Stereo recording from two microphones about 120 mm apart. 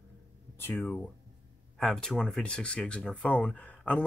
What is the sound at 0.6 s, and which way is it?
Speech, 15° left (ahead or behind).